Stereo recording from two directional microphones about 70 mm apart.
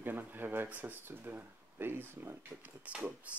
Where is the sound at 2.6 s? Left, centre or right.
Right.